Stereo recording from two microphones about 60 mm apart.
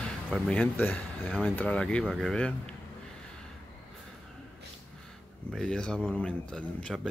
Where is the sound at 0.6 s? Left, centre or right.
Left.